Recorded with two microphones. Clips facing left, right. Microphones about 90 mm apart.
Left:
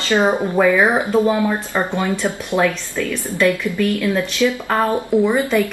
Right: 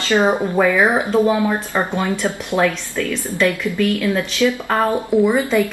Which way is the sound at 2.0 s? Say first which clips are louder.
Even; 15° left (ahead or behind).